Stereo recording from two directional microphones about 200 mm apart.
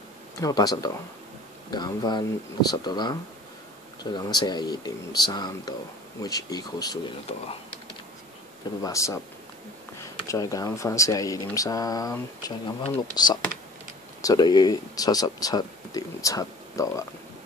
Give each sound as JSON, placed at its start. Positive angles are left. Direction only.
{"t": 0.4, "sound": "speech", "side_deg": 20}
{"t": 7.3, "sound": "speech", "side_deg": 30}
{"t": 8.8, "sound": "speech", "side_deg": 15}